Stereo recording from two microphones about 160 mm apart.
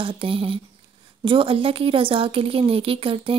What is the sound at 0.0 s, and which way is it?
A woman's voice, 35° right (ahead or behind).